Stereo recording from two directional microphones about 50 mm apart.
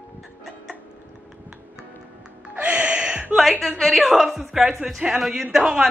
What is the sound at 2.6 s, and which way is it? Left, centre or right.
Music, right.